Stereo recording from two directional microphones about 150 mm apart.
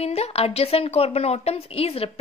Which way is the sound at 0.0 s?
45° left (ahead or behind).